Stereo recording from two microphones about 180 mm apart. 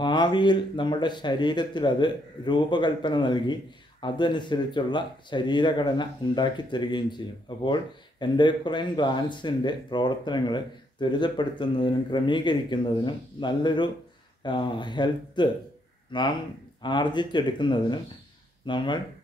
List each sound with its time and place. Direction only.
0.0 s speech: 25° left (ahead or behind)